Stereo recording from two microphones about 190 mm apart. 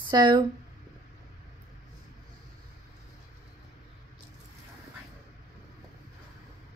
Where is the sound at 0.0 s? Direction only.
25° right (ahead or behind).